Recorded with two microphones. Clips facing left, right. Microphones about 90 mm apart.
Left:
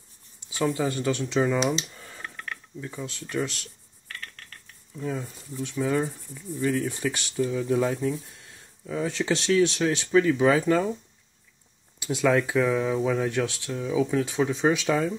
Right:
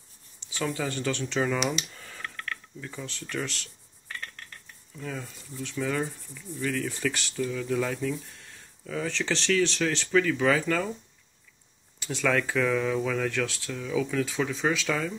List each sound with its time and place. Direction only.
0.4 s a sound: 10° left (ahead or behind)
0.7 s speech: 15° left (ahead or behind)
1.8 s a sound: 25° left (ahead or behind)
4.9 s cricket: 20° left (ahead or behind)
9.0 s speech: 10° left (ahead or behind)
9.6 s cricket: 15° left (ahead or behind)
12.0 s cricket: 15° left (ahead or behind)